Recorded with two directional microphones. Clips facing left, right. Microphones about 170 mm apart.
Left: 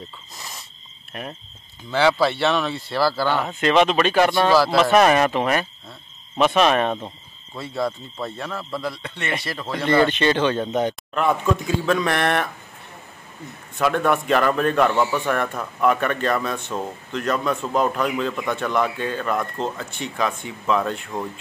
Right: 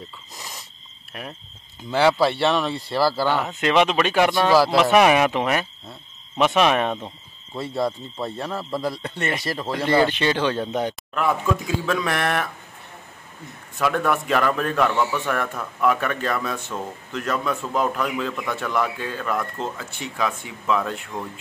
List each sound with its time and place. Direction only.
1.9 s speech: 10° right (ahead or behind)
8.8 s speech: 40° right (ahead or behind)
9.7 s speech: 10° right (ahead or behind)
13.7 s speech: centre (ahead or behind)
15.0 s a man's voice: 15° left (ahead or behind)
15.2 s speech: centre (ahead or behind)
18.3 s a man's voice: 20° left (ahead or behind)
18.6 s speech: 5° right (ahead or behind)